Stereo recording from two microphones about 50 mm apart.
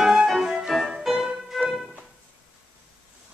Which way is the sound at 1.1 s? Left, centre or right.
Centre.